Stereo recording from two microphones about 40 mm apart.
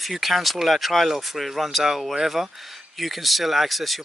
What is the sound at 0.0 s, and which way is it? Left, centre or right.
Speech, centre.